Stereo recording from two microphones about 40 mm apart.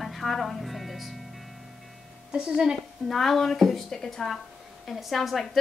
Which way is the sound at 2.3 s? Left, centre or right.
Right.